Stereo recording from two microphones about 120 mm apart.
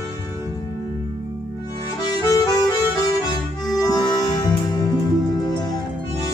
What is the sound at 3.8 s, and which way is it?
Accordion, 35° left (ahead or behind).